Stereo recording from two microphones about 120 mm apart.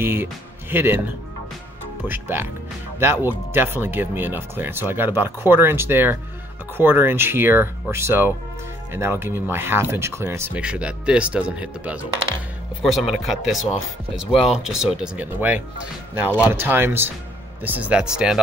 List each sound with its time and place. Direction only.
0.0 s speech: 20° right (ahead or behind)
2.0 s speech: 15° right (ahead or behind)
10.6 s speech: 10° right (ahead or behind)
12.8 s speech: centre (ahead or behind)